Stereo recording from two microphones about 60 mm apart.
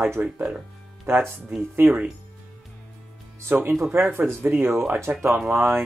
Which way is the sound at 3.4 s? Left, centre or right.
Right.